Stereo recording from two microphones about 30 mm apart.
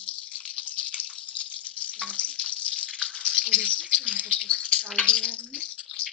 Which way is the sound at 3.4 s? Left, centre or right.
Left.